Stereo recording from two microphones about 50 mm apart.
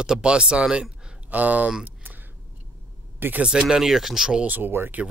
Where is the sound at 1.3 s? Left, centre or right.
Right.